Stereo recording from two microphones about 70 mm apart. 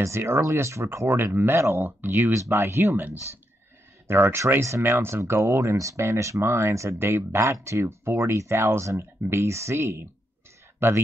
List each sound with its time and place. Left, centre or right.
0.0 s speech: right
4.1 s speech: right